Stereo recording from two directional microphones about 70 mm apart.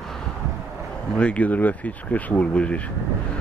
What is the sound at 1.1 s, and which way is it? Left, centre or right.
Speech, centre.